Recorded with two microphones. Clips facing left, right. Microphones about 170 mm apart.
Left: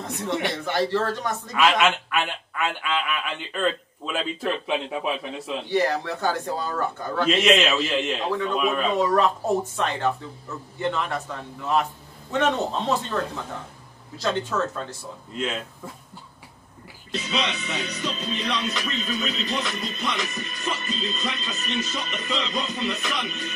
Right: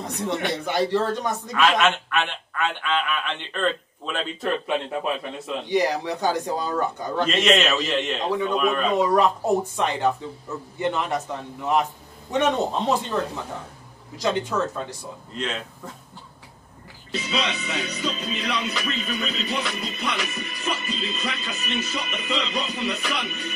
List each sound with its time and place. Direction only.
0.0 s speech: 15° right (ahead or behind)
1.5 s speech: 5° left (ahead or behind)
5.7 s speech: 15° right (ahead or behind)
7.2 s speech: 5° left (ahead or behind)
8.3 s speech: 15° right (ahead or behind)
8.5 s speech: 5° left (ahead or behind)
8.9 s speech: 15° right (ahead or behind)
15.3 s speech: 5° left (ahead or behind)
17.1 s speech: 5° right (ahead or behind)
21.5 s speech: 10° right (ahead or behind)